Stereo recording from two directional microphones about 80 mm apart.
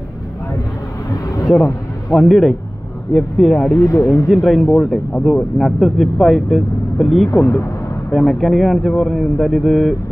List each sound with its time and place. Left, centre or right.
1.1 s vehicle: left
1.6 s a sound: left
2.1 s speech: centre
3.7 s speech: left
4.3 s speech: centre
7.2 s speech: left
8.1 s speech: centre